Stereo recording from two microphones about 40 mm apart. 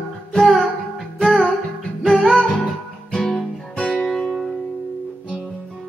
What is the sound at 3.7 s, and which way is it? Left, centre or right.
Music, left.